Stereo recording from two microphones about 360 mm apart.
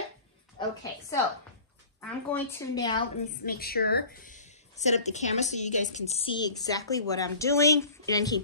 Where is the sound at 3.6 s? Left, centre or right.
Left.